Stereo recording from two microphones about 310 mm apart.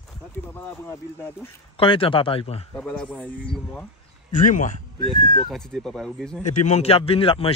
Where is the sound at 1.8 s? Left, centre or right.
Centre.